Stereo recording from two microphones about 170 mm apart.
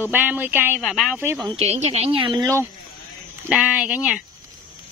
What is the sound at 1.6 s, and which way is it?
Speech, 40° right (ahead or behind).